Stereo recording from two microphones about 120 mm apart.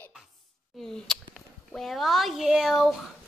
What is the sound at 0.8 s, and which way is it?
A woman's voice, 5° left (ahead or behind).